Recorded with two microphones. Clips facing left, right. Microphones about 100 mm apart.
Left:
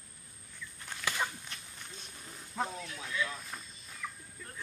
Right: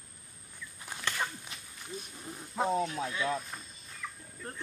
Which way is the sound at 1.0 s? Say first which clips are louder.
Even; 10° left (ahead or behind).